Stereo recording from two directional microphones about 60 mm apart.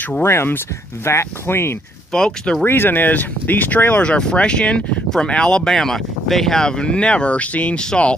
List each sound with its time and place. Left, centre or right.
0.2 s speech: left
2.1 s speech: centre
2.6 s speech: left; by 8.2 s centre